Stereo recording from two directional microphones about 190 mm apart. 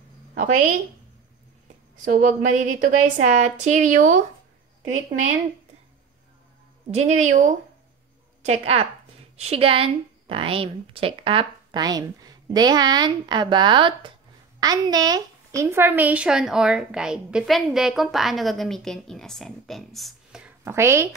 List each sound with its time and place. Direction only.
0.4 s speech: 40° right (ahead or behind)
2.0 s speech: 40° right (ahead or behind)
6.9 s a woman's voice: 35° right (ahead or behind); by 20.4 s centre (ahead or behind)
20.6 s speech: 15° right (ahead or behind)